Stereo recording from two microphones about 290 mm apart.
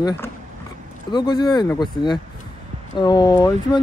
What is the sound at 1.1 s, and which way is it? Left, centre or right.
Speech, centre.